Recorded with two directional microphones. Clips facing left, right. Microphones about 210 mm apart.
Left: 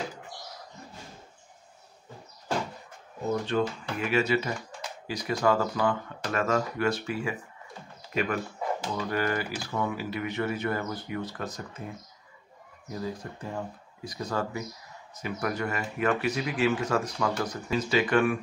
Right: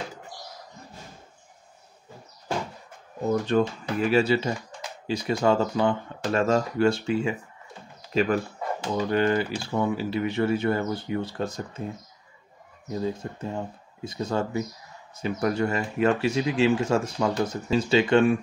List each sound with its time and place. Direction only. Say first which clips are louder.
3.5 s speech: right 5 dB; 45° right (ahead or behind)
4.0 s speech: right 4 dB; 30° right (ahead or behind)
13.0 s speech: right 5 dB; 25° right (ahead or behind)